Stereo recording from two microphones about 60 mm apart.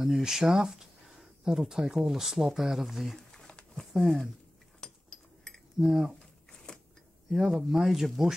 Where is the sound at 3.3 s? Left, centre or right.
Centre.